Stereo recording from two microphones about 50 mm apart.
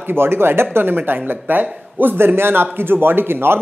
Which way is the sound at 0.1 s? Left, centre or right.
Right.